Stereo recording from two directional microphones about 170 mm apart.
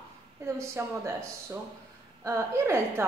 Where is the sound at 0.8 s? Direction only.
15° right (ahead or behind).